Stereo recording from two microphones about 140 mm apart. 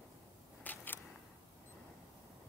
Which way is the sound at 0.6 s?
15° left (ahead or behind).